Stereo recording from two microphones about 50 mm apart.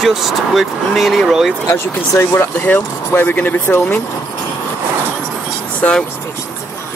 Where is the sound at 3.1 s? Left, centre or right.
Left.